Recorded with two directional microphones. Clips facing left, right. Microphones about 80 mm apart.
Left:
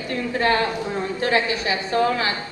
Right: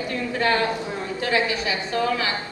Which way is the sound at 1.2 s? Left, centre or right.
Left.